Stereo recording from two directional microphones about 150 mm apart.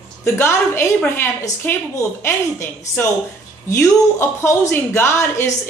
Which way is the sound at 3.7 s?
15° left (ahead or behind).